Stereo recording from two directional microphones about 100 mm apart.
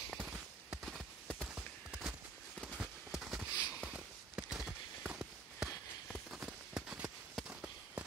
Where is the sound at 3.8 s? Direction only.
15° right (ahead or behind).